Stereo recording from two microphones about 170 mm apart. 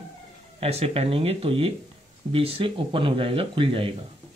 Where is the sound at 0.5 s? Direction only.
35° right (ahead or behind).